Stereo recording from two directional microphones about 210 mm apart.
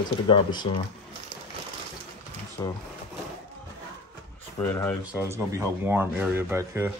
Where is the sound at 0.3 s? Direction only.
20° left (ahead or behind).